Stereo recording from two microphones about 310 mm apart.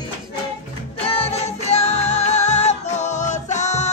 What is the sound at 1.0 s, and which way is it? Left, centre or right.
Music, centre.